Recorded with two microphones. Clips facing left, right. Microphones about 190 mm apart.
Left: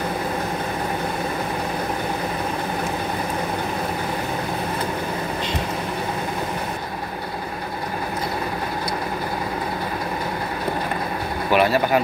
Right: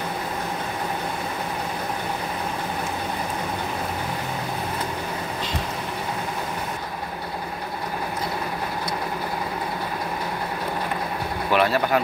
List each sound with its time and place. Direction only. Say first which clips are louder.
11.5 s speech: left 2 dB; 5° left (ahead or behind)